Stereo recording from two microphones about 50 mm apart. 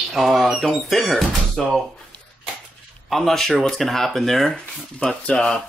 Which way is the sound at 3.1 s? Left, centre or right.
Centre.